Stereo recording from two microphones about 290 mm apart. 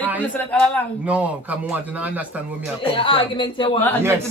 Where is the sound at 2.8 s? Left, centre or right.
Centre.